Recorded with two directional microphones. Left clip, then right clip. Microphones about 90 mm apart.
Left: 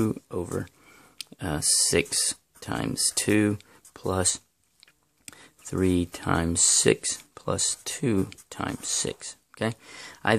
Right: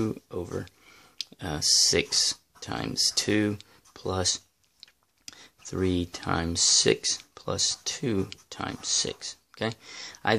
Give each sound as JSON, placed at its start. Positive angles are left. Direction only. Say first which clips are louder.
{"t": 0.1, "sound": "speech", "louder": "left 3 dB", "side_deg": 45}